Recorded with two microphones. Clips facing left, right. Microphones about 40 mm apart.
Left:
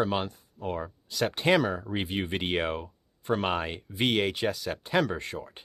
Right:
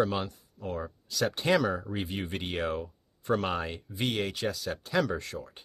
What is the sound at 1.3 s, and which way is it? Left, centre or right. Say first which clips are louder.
Speech: left 2 dB; left.